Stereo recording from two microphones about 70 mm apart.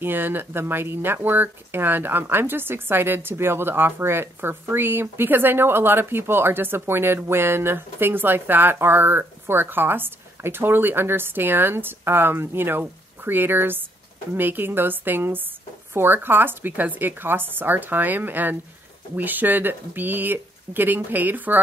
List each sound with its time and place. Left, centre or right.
0.0 s a woman's voice: right